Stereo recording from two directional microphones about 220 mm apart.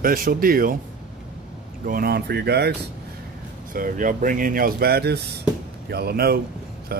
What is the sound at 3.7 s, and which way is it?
Speech, 40° right (ahead or behind).